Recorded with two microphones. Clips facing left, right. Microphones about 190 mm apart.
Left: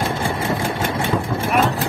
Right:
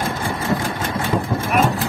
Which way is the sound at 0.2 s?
25° left (ahead or behind).